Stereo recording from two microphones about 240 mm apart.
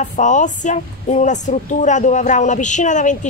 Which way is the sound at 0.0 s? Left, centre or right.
Left.